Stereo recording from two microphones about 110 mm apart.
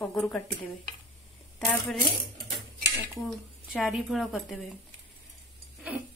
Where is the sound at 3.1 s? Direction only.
Centre (ahead or behind).